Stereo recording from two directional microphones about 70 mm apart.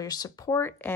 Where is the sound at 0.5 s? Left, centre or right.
Left.